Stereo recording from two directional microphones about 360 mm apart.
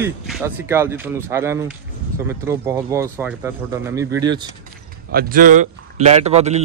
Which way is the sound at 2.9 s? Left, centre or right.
Centre.